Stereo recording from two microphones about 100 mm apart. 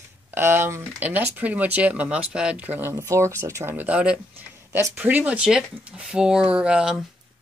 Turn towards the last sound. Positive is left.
turn(degrees=-10)  # may be behind; listen again after turning